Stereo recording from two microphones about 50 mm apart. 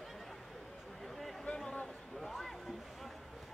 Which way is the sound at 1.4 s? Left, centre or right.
Centre.